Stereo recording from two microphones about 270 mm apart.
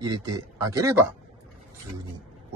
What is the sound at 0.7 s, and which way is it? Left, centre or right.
Speech, centre.